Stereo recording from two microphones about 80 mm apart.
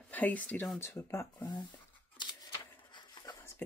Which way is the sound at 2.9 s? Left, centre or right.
Left.